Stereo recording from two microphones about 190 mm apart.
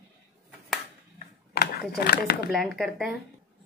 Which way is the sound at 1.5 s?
50° left (ahead or behind).